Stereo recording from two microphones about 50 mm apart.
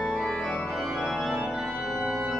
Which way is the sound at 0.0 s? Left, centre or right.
Centre.